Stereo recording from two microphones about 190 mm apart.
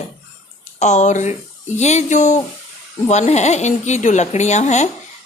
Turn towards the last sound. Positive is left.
turn(degrees=40)  # may be behind; listen again after turning